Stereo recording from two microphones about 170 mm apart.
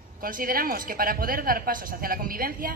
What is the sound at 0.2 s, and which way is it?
Speech, 55° right (ahead or behind).